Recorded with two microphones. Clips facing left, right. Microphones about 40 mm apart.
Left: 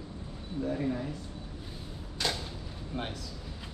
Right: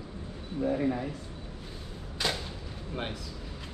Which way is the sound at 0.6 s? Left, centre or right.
Right.